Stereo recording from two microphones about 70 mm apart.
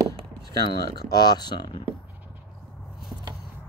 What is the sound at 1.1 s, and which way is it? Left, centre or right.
Speech, left.